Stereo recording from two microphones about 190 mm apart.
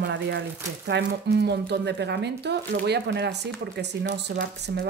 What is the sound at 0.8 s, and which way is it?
Speech, 65° right (ahead or behind).